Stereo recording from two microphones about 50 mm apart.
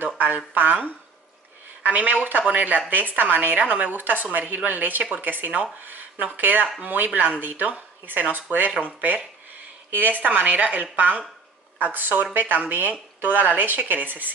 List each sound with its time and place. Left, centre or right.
0.6 s a woman's voice: right
5.8 s a sound: right
6.3 s a woman's voice: right